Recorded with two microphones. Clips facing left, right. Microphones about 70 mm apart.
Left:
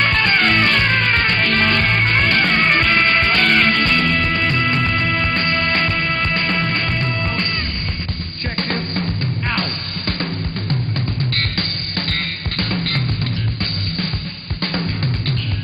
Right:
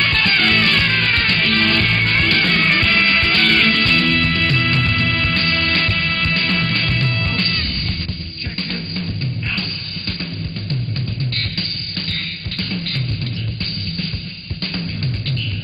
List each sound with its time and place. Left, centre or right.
0.0 s music: centre
8.5 s music: left
12.1 s music: left
14.6 s music: left